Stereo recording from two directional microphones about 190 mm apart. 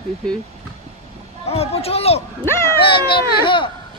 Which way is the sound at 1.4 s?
30° left (ahead or behind).